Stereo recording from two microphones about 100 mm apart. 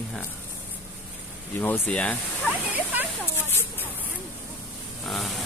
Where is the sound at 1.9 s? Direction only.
10° left (ahead or behind).